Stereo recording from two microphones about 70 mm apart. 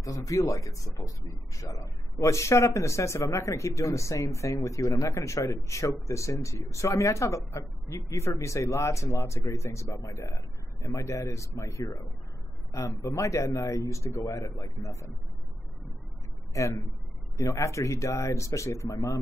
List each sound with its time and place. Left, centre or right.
0.0 s a man's voice: left
16.5 s a man's voice: left